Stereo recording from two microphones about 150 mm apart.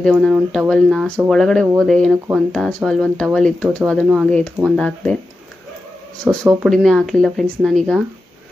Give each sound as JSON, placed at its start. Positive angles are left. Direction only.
{"t": 0.0, "sound": "speech", "side_deg": 0}
{"t": 6.2, "sound": "speech", "side_deg": -20}
{"t": 6.6, "sound": "speech", "side_deg": 0}